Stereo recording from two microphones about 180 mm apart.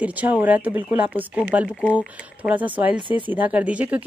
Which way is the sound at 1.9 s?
10° right (ahead or behind).